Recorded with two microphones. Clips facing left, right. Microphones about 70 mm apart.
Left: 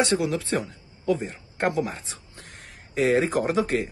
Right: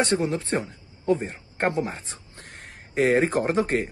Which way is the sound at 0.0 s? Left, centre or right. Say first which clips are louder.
Even; right.